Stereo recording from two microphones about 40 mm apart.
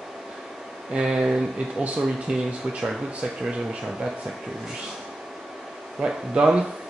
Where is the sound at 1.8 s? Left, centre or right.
Right.